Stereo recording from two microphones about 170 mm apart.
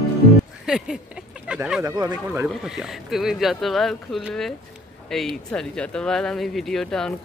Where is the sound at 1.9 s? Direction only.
20° right (ahead or behind).